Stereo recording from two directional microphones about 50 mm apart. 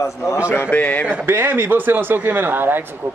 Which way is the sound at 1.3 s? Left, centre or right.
Right.